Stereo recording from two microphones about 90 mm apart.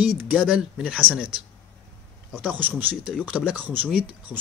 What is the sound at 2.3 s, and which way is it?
Speech, 10° right (ahead or behind).